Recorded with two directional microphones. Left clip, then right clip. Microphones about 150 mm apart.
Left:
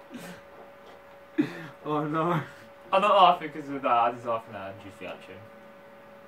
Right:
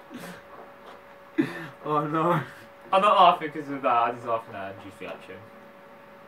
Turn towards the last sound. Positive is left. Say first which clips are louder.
# right 2 dB
turn(degrees=10)  # may be behind; listen again after turning